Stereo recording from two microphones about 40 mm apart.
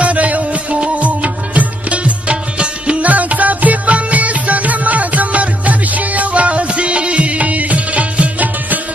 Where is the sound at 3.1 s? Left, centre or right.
Right.